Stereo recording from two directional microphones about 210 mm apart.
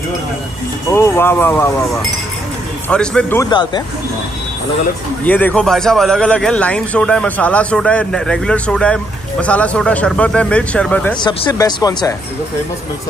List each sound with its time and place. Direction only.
0.9 s speech: 10° left (ahead or behind)
5.2 s a man's voice: 10° left (ahead or behind)
11.2 s speech: 20° left (ahead or behind)